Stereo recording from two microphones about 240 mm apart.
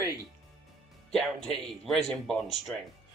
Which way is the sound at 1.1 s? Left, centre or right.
Centre.